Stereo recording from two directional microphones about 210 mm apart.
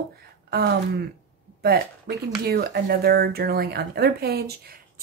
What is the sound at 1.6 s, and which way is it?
Speech, 50° right (ahead or behind).